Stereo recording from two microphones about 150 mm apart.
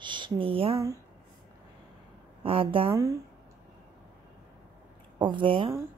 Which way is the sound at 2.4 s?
35° right (ahead or behind).